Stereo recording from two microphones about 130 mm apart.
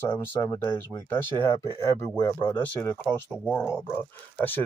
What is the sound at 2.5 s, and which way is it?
Speech, 20° left (ahead or behind).